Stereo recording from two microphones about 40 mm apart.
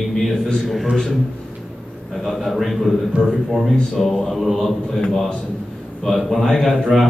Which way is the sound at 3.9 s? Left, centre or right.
Centre.